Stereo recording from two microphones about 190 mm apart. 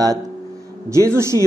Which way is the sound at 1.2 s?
15° right (ahead or behind).